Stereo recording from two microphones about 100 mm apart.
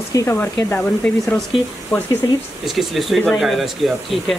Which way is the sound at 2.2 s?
45° left (ahead or behind).